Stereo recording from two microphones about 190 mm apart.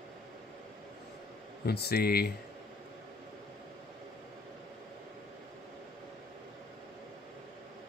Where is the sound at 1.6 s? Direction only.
55° left (ahead or behind).